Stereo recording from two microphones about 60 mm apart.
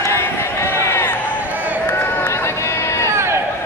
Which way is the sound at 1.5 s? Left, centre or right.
Right.